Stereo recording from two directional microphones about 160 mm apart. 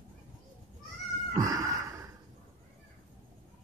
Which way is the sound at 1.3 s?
20° right (ahead or behind).